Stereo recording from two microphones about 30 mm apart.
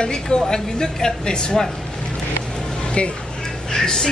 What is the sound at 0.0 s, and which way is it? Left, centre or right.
Speech, left.